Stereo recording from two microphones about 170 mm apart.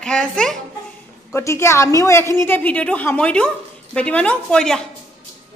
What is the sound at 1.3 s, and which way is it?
A woman's voice, 15° left (ahead or behind).